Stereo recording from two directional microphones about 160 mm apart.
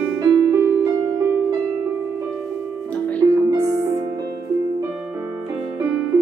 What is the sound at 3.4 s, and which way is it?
Music, 20° right (ahead or behind).